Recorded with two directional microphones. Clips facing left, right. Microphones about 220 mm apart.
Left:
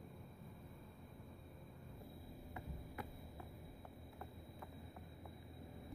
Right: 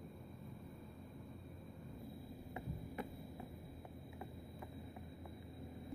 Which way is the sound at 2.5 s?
20° right (ahead or behind).